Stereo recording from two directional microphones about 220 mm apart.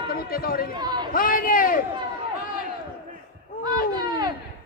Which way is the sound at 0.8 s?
20° right (ahead or behind).